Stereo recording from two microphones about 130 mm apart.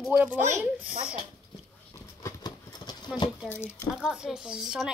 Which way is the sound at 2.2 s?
30° left (ahead or behind).